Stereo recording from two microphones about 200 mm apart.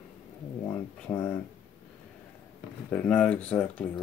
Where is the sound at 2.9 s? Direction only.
5° left (ahead or behind).